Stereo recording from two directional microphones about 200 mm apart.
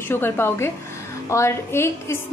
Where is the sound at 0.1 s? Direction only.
10° left (ahead or behind).